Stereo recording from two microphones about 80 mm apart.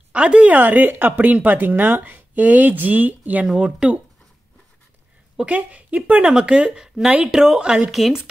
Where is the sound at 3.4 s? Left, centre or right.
Centre.